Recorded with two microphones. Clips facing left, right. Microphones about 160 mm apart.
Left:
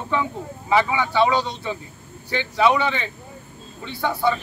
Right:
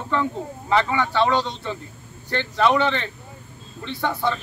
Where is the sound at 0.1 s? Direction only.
10° left (ahead or behind).